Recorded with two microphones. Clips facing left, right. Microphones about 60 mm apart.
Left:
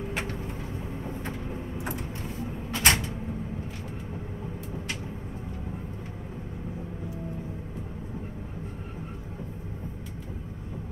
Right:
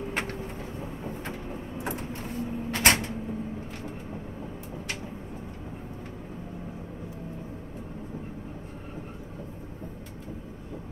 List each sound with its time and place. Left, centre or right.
2.7 s cupboard open or close: right